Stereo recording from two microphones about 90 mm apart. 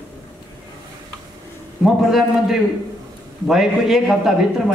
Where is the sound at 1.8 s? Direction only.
5° right (ahead or behind).